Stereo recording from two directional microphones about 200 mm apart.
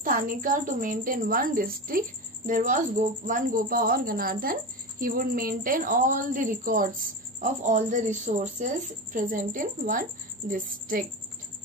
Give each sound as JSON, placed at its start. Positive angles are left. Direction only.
{"t": 0.0, "sound": "a woman's voice", "side_deg": -45}